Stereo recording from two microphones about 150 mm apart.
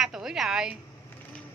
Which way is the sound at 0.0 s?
5° right (ahead or behind).